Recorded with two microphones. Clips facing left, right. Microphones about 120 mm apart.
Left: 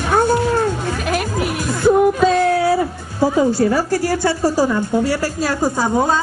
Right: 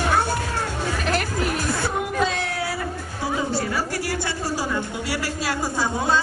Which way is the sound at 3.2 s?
40° left (ahead or behind).